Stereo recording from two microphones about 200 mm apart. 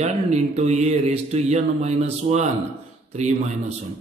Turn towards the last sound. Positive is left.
turn(degrees=-35)  # may be behind; listen again after turning